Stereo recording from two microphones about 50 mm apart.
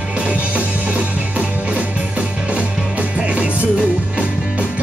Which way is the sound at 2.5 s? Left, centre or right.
Right.